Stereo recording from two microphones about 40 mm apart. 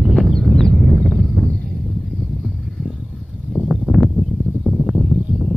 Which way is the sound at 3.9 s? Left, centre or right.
Right.